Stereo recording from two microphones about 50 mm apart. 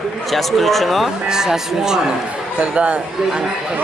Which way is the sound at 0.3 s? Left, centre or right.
Centre.